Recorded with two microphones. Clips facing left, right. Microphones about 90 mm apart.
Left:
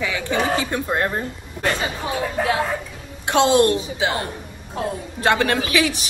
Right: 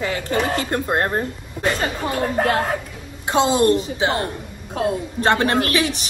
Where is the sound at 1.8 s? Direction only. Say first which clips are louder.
Right 2 dB; 55° right (ahead or behind).